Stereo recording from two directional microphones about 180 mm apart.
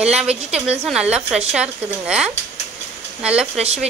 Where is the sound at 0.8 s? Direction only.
5° right (ahead or behind).